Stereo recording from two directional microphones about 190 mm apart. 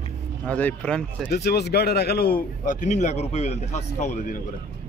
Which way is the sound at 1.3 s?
60° left (ahead or behind).